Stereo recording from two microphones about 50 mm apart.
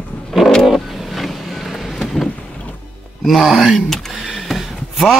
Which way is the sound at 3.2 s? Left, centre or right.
Centre.